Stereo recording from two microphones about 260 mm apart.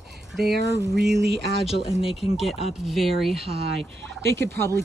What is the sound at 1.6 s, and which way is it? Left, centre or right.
Speech, left.